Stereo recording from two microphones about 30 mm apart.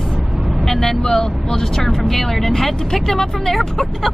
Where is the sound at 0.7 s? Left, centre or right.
Centre.